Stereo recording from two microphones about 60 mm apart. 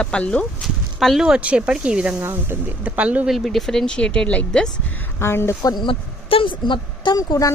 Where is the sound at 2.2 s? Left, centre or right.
Right.